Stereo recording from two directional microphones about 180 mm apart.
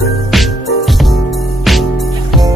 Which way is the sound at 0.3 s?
Centre (ahead or behind).